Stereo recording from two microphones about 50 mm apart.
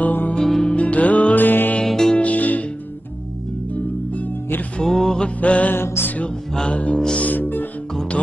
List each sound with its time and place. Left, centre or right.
0.0 s music: left
0.4 s music: centre
0.7 s music: left
1.9 s music: centre
2.1 s music: left
3.7 s music: left
4.8 s music: centre
5.2 s music: left
5.8 s music: left
6.7 s music: left
7.2 s music: left